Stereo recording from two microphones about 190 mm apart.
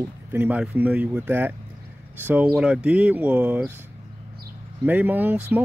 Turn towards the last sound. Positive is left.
turn(degrees=-10)  # may be behind; listen again after turning